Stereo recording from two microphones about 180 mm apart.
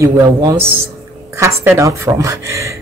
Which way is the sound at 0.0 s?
20° right (ahead or behind).